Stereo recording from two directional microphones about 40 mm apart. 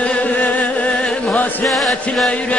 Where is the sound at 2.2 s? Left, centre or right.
Left.